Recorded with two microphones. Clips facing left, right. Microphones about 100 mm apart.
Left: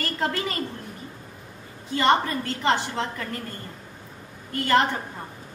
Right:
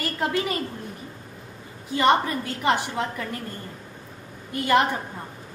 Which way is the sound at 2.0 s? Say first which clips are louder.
Right 1 dB; 15° right (ahead or behind).